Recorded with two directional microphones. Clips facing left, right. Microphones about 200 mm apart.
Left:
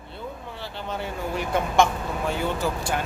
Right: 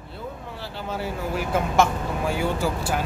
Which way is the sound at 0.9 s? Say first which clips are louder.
Right 2 dB; 5° right (ahead or behind).